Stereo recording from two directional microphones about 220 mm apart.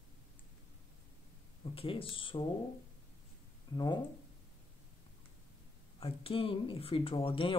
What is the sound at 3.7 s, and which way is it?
Speech, 20° left (ahead or behind).